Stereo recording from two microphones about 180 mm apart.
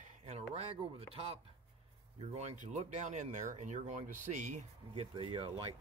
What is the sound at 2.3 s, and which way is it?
Speech, 40° right (ahead or behind).